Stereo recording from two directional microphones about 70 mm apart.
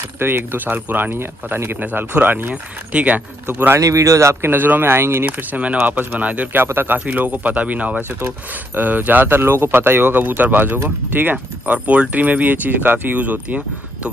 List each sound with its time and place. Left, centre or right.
0.2 s speech: right
1.8 s speech: right
3.4 s speech: right
3.8 s speech: right
5.5 s speech: centre